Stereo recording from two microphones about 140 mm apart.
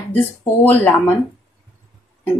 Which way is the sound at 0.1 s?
15° left (ahead or behind).